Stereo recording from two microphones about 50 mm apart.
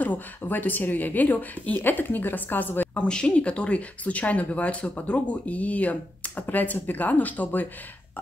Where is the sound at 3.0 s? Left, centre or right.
Left.